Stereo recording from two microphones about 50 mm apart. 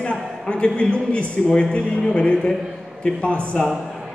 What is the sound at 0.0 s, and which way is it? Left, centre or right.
A man's voice, left.